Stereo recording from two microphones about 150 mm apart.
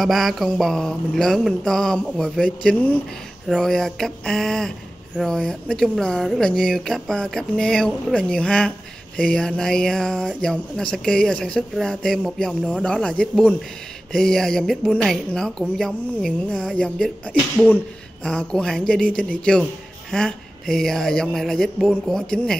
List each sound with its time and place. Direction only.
0.0 s speech: centre (ahead or behind)